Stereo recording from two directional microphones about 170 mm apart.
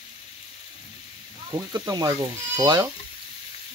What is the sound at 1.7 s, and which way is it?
Speech, 20° right (ahead or behind).